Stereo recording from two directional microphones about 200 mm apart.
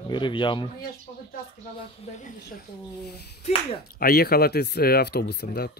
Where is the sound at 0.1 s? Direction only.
25° left (ahead or behind).